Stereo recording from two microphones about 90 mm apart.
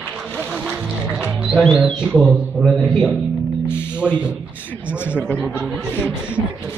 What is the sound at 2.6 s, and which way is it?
Speech, 5° left (ahead or behind).